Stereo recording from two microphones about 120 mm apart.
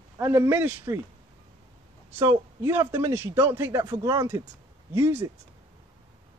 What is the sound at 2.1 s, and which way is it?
Speech, 20° right (ahead or behind).